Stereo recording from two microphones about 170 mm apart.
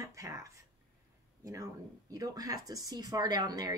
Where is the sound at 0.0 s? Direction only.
20° right (ahead or behind).